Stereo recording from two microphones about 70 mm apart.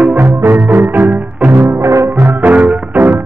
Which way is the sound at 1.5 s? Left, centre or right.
Right.